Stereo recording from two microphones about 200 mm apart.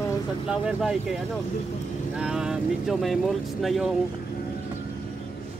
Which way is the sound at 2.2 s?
5° right (ahead or behind).